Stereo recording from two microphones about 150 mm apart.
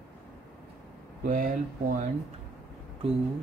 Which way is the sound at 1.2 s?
65° right (ahead or behind).